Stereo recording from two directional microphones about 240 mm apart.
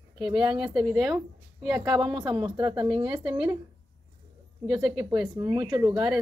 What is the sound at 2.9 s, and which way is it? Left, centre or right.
Speech, right.